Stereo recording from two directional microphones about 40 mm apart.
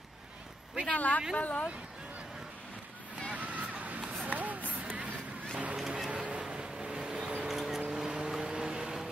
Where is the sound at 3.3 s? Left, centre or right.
Right.